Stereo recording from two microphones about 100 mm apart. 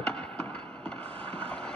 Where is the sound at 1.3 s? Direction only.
10° left (ahead or behind).